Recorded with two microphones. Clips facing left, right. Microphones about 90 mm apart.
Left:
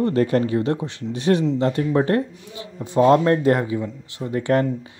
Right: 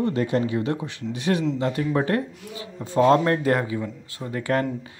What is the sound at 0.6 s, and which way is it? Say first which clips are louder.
Speech: left 3 dB; 30° left (ahead or behind).